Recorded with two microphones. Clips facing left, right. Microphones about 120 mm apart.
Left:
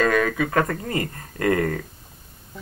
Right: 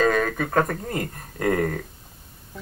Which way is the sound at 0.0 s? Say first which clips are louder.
Left 1 dB; 55° left (ahead or behind).